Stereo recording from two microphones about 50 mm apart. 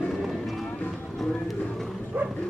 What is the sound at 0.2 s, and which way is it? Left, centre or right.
Music, centre.